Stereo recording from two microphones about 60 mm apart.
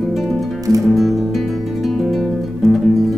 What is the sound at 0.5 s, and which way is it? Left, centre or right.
Music, right.